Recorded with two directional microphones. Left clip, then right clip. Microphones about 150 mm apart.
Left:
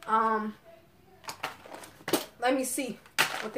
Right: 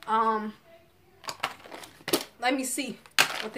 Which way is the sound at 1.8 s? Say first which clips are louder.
Right 1 dB; 10° right (ahead or behind).